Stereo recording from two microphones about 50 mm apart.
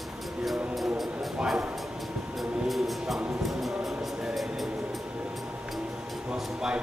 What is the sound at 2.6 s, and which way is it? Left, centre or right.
Music, centre.